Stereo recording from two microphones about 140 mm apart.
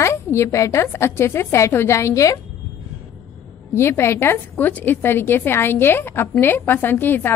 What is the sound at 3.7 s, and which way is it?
A woman's voice, 20° left (ahead or behind).